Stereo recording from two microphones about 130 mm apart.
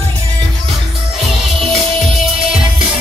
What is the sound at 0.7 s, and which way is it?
Music, centre (ahead or behind).